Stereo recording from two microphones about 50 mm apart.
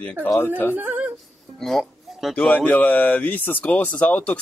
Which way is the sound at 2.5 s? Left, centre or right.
Left.